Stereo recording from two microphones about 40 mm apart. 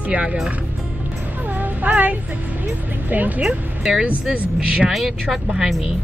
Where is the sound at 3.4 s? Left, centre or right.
Right.